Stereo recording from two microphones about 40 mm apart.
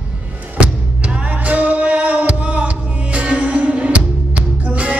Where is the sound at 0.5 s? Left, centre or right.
Right.